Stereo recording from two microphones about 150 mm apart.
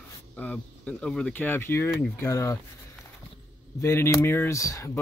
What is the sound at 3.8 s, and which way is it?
Speech, 20° left (ahead or behind).